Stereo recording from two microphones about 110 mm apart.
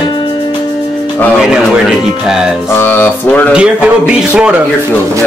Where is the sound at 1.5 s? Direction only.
5° right (ahead or behind).